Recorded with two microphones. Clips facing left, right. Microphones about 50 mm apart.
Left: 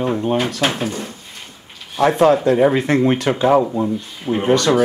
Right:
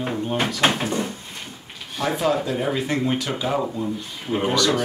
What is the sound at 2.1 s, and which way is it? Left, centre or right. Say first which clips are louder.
Speech: left 8 dB; left.